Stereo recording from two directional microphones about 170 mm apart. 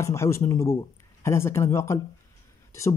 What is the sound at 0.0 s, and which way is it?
Speech, 15° left (ahead or behind).